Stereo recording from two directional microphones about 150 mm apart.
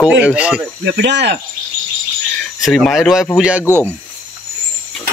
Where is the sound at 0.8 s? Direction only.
90° right.